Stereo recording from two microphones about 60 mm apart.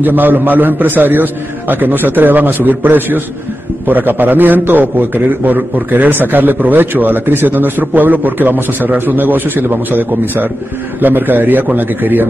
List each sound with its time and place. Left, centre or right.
0.0 s a man's voice: right